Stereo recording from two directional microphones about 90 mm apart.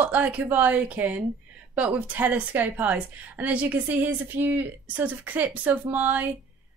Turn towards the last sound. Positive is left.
turn(degrees=-20)  # may be behind; listen again after turning